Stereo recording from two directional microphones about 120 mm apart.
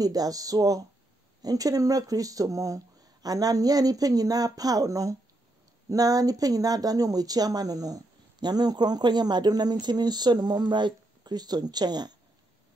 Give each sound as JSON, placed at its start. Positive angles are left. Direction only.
{"t": 0.0, "sound": "speech", "side_deg": -30}